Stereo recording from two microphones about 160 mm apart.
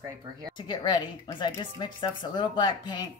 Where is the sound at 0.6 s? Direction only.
30° left (ahead or behind).